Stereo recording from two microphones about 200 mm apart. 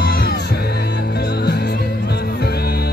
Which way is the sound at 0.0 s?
50° left (ahead or behind).